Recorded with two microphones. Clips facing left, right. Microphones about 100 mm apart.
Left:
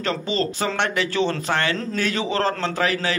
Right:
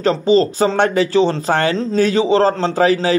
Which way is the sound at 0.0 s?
35° right (ahead or behind).